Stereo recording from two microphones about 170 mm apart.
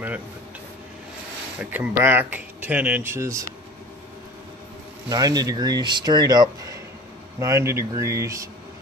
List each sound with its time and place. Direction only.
1.6 s speech: 10° right (ahead or behind)
5.1 s speech: 20° right (ahead or behind)